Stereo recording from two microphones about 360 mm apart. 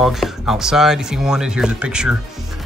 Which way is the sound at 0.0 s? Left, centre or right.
Centre.